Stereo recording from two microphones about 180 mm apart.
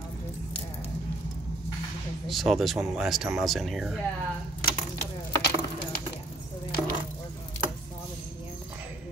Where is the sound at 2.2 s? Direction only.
Centre (ahead or behind).